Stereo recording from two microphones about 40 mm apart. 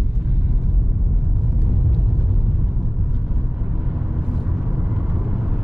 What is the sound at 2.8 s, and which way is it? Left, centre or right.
Vehicle, right.